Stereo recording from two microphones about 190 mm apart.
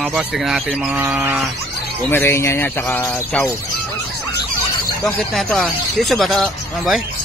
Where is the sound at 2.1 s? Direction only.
10° left (ahead or behind).